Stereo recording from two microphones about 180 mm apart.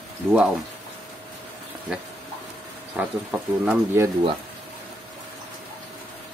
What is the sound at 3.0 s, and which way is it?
Speech, 10° right (ahead or behind).